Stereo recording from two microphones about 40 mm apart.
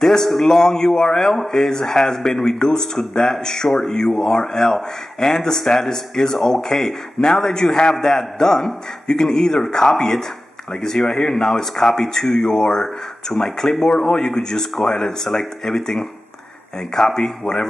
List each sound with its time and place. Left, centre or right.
0.0 s a man's voice: centre